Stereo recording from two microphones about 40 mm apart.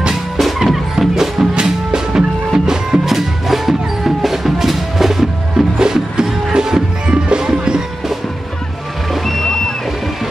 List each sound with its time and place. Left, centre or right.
0.1 s music: centre
1.5 s music: right; by 5.7 s centre
5.8 s music: centre
9.1 s music: centre